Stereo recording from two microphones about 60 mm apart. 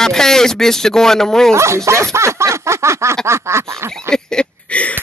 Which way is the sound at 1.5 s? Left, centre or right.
Right.